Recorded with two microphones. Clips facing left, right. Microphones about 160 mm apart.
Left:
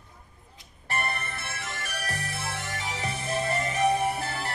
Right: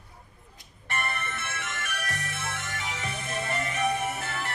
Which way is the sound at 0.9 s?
35° left (ahead or behind).